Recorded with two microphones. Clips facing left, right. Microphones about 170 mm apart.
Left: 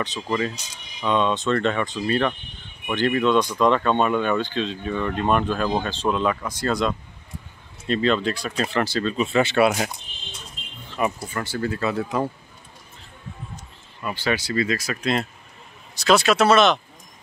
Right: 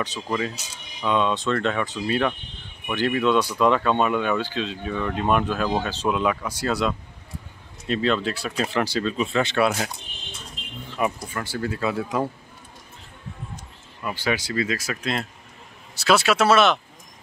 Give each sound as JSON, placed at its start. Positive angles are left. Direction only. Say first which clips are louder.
{"t": 0.0, "sound": "speech", "louder": "left 2 dB", "side_deg": -5}
{"t": 9.1, "sound": "speech", "louder": "left 3 dB", "side_deg": 5}
{"t": 11.1, "sound": "speech", "louder": "left 1 dB", "side_deg": 0}
{"t": 11.4, "sound": "speech", "louder": "left 1 dB", "side_deg": -10}
{"t": 14.0, "sound": "speech", "louder": "left 1 dB", "side_deg": -10}